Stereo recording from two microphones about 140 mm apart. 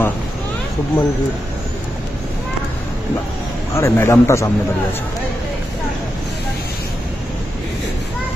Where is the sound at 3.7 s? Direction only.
20° left (ahead or behind).